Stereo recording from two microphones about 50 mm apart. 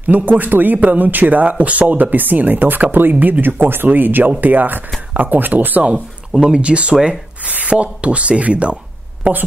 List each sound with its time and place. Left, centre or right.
0.0 s a man's voice: right